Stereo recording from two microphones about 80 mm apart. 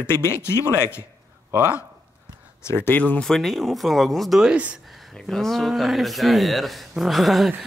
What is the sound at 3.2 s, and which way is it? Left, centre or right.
Speech, centre.